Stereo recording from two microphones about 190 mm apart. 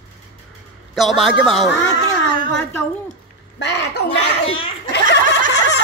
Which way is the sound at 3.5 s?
70° left (ahead or behind).